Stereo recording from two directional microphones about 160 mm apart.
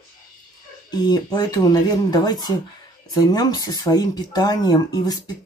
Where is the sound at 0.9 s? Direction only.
25° left (ahead or behind).